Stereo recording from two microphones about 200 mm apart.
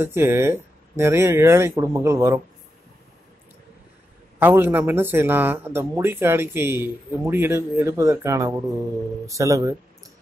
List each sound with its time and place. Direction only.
0.0 s speech: 10° right (ahead or behind)
4.4 s speech: 10° right (ahead or behind)